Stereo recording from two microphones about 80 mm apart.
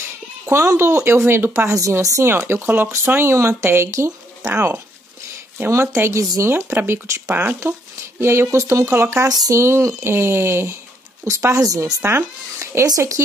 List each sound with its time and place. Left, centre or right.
0.5 s speech: right
1.7 s speech: right
2.2 s speech: right
8.2 s speech: right
12.0 s speech: right
12.8 s speech: right